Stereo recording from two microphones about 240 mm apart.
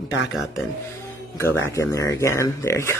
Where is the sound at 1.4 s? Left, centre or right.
Centre.